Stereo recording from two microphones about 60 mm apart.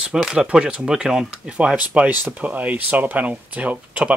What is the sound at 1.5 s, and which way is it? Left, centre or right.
Speech, centre.